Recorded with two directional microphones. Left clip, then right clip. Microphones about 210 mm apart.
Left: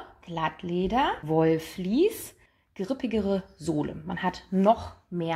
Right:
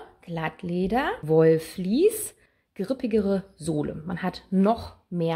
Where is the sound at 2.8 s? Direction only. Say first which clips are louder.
Right 3 dB; 45° right (ahead or behind).